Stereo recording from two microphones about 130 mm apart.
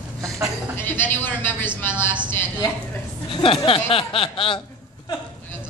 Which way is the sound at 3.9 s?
45° left (ahead or behind).